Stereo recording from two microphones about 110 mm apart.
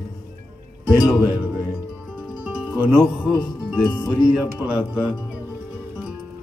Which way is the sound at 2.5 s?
10° right (ahead or behind).